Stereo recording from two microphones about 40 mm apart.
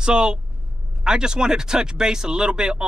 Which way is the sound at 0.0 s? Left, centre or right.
Right.